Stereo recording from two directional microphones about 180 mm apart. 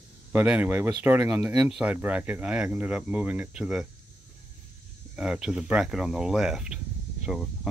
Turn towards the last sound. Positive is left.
turn(degrees=-5)  # may be behind; listen again after turning